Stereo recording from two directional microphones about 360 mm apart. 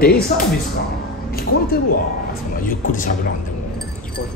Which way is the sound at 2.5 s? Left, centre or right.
Left.